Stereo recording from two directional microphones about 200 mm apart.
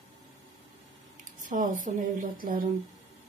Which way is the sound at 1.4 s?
40° right (ahead or behind).